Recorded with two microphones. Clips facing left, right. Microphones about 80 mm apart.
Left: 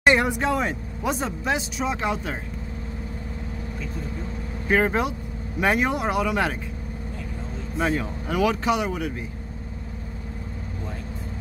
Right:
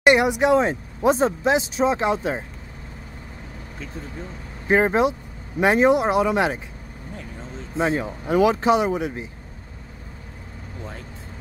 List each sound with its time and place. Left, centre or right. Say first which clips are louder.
0.0 s speech: right 3 dB; centre
4.6 s speech: right 4 dB; right
7.7 s speech: right 2 dB; right